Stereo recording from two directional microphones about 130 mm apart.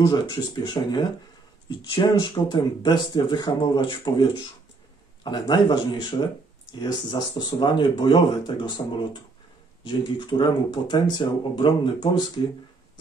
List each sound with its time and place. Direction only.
0.0 s speech: 35° left (ahead or behind)